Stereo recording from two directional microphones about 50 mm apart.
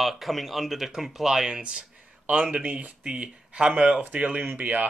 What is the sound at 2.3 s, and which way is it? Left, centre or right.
Speech, right.